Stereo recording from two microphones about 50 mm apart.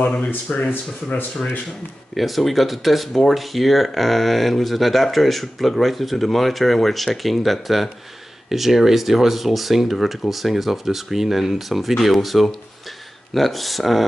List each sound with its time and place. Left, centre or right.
0.5 s speech: left
2.1 s speech: centre